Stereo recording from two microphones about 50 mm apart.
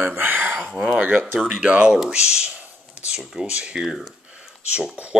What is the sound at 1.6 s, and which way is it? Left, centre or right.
Speech, right.